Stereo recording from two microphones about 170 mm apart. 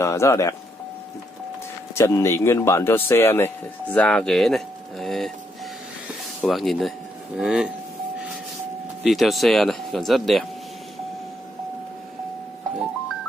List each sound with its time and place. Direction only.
0.0 s speech: 15° left (ahead or behind)
2.0 s speech: 15° left (ahead or behind)
6.4 s speech: centre (ahead or behind)
9.0 s speech: centre (ahead or behind)